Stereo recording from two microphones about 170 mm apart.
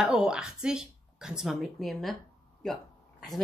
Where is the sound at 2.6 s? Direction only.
Centre (ahead or behind).